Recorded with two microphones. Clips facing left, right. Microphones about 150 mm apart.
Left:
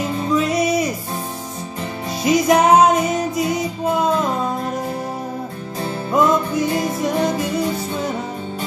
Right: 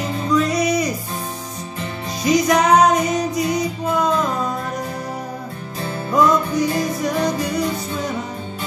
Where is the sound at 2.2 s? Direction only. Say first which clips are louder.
Left 1 dB; 25° left (ahead or behind).